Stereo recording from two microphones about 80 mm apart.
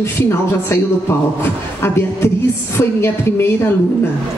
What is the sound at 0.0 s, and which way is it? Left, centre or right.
A woman's voice, left.